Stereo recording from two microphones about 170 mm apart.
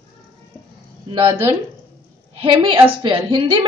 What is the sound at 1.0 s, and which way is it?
Speech, 30° right (ahead or behind).